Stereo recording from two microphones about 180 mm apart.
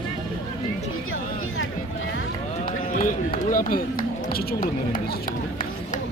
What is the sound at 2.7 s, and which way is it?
Speech, 45° left (ahead or behind).